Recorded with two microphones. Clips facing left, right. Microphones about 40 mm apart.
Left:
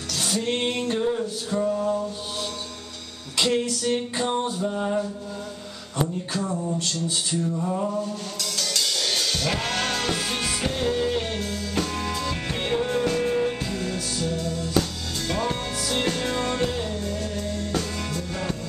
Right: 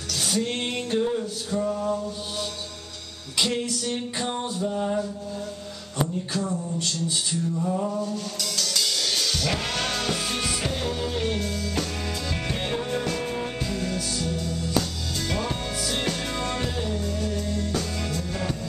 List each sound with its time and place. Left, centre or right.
0.1 s music: centre
1.7 s mantra: centre
3.3 s music: centre
6.3 s a sound: centre
7.5 s music: centre